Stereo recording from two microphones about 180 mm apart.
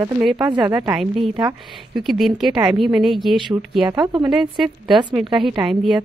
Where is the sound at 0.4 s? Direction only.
25° right (ahead or behind).